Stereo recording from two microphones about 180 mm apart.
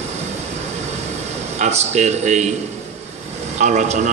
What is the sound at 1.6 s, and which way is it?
Speech, 40° right (ahead or behind).